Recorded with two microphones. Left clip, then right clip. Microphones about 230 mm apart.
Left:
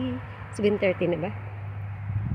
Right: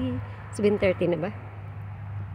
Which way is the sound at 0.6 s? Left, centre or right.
Centre.